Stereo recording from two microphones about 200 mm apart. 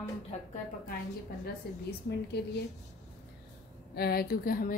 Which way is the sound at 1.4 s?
55° left (ahead or behind).